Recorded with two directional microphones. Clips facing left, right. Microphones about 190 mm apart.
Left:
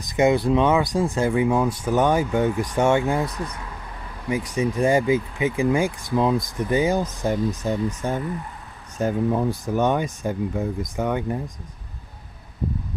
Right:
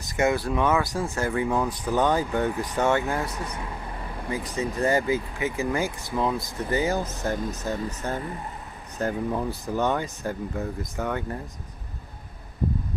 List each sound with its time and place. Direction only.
0.0 s speech: 15° left (ahead or behind)
4.3 s speech: 15° left (ahead or behind)